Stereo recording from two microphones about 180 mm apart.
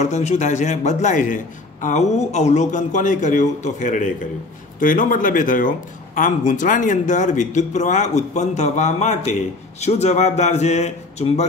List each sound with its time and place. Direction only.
0.0 s speech: 40° left (ahead or behind)